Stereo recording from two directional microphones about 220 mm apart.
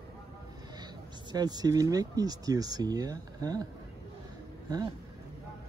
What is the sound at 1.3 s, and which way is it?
Speech, 20° right (ahead or behind).